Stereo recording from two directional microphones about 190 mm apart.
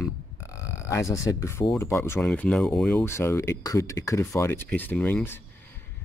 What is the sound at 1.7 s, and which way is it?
Speech, 10° left (ahead or behind).